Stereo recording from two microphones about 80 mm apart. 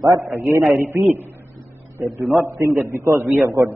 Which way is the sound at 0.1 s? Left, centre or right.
Right.